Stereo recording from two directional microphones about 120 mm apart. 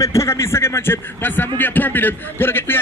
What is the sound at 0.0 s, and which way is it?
A man's voice, 25° left (ahead or behind).